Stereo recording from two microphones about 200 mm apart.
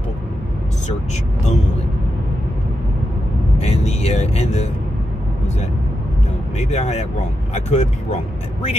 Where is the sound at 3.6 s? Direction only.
35° left (ahead or behind).